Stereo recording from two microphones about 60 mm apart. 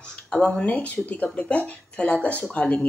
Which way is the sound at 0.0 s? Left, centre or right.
Centre.